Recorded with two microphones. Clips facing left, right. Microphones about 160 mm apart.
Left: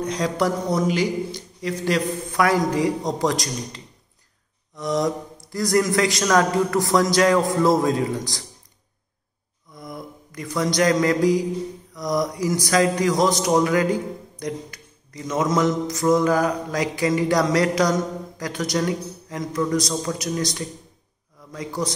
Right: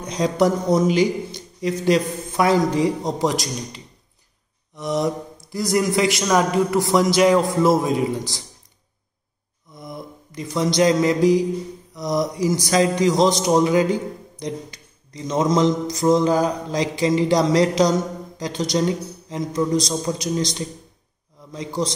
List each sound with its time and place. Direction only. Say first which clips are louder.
0.0 s speech: right 3 dB; 20° right (ahead or behind)
4.7 s speech: even; 20° right (ahead or behind)
9.8 s speech: right 1 dB; 20° right (ahead or behind)
11.9 s a sound: right 1 dB; 25° right (ahead or behind)
12.3 s speech: right 2 dB; 25° right (ahead or behind)